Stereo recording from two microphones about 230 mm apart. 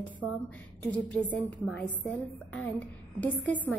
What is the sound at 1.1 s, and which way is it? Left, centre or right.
A woman's voice, centre.